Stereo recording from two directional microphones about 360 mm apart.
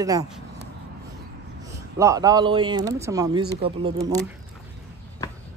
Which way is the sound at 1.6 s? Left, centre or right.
Centre.